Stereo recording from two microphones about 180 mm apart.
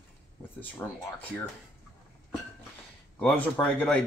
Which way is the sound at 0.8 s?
15° left (ahead or behind).